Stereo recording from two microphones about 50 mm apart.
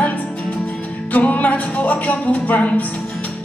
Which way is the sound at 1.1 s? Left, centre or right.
Left.